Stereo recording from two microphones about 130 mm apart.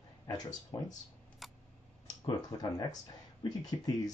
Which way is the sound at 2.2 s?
30° left (ahead or behind).